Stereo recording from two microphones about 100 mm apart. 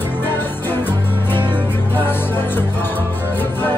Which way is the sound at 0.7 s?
20° left (ahead or behind).